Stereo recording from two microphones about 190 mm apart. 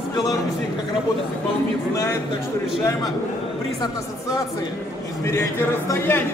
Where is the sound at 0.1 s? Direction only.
20° left (ahead or behind).